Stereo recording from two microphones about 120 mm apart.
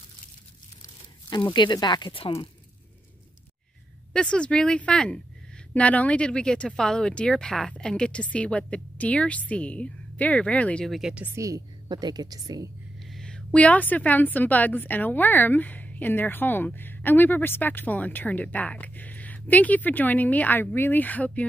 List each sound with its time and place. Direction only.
1.5 s speech: 40° left (ahead or behind)
4.1 s a woman's voice: 10° left (ahead or behind)
11.3 s a woman's voice: 30° right (ahead or behind)
13.0 s a woman's voice: 5° left (ahead or behind)